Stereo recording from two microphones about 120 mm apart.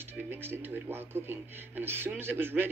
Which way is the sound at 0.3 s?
20° right (ahead or behind).